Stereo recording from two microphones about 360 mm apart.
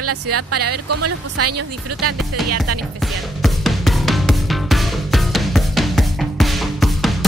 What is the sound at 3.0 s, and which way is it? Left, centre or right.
Music, centre.